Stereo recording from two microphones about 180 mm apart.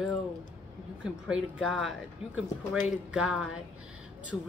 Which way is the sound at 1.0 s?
5° right (ahead or behind).